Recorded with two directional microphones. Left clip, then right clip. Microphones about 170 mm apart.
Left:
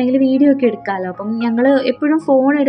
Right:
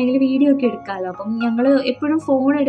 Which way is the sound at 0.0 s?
30° left (ahead or behind).